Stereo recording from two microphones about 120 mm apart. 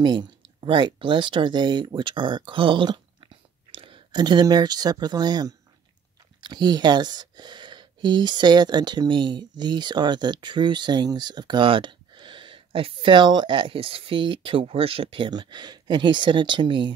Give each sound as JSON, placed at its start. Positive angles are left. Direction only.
{"t": 0.0, "sound": "speech", "side_deg": -40}